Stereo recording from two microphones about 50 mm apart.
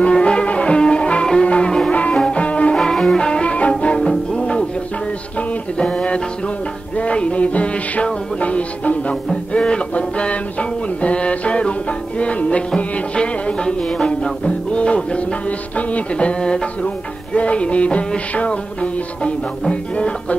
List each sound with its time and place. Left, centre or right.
0.0 s music: left
5.8 s music: centre